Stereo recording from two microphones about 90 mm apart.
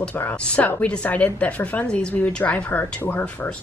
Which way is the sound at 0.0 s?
20° left (ahead or behind).